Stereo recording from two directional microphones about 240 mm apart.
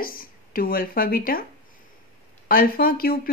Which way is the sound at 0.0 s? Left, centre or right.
Left.